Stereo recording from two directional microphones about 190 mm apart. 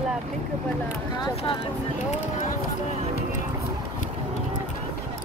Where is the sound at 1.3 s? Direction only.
30° left (ahead or behind).